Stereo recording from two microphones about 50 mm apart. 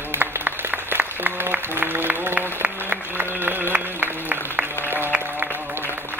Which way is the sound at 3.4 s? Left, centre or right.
Right.